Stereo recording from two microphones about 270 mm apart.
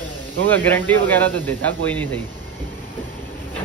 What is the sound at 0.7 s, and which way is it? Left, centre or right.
Speech, centre.